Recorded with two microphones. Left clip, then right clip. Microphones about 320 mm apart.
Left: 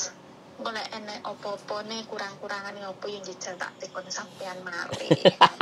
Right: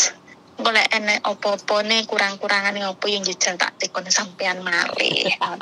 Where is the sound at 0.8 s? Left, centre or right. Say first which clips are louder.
Right 16 dB; right.